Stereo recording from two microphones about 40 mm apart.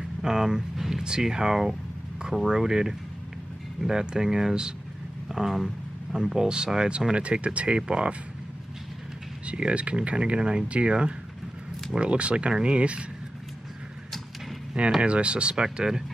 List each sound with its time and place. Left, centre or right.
0.2 s speech: centre
9.5 s speech: right
15.0 s speech: right
15.5 s speech: centre